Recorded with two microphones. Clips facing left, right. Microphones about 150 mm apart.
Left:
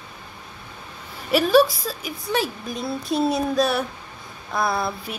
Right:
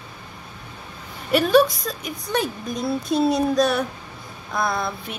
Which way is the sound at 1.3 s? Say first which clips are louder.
Even; centre (ahead or behind).